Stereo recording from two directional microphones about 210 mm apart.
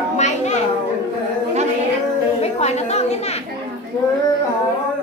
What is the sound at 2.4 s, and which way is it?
Chatter, 30° left (ahead or behind).